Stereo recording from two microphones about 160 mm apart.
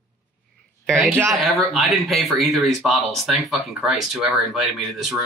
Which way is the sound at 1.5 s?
Centre (ahead or behind).